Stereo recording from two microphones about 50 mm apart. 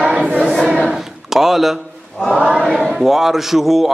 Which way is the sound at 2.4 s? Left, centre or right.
Centre.